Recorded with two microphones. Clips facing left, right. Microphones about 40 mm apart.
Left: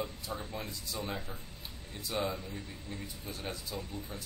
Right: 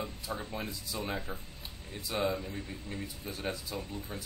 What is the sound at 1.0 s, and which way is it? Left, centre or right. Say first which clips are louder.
Speech: right 2 dB; right.